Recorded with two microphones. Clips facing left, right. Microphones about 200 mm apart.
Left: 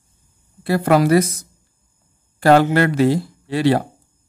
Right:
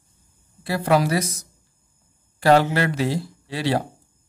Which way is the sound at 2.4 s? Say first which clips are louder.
Left 4 dB; 55° left (ahead or behind).